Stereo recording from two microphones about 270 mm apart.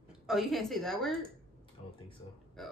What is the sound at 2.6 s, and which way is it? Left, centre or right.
Speech, centre.